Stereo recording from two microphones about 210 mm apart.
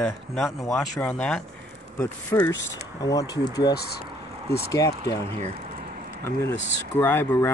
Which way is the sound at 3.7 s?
50° left (ahead or behind).